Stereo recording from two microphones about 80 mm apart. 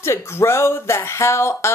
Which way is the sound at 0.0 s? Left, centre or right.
Left.